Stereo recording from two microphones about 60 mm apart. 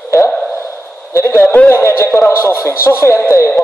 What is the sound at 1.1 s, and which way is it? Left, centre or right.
A man's voice, left.